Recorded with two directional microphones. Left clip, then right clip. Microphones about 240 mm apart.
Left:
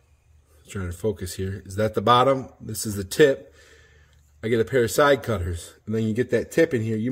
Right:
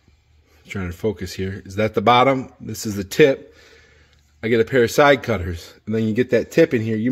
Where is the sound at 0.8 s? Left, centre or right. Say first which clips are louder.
Right 3 dB; right.